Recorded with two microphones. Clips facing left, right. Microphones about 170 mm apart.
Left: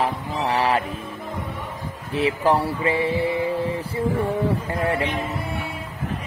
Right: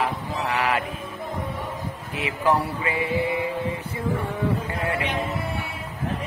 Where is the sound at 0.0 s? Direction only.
30° left (ahead or behind).